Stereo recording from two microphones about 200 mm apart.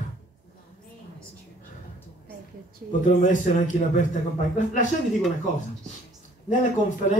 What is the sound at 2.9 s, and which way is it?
A man's voice, 40° left (ahead or behind).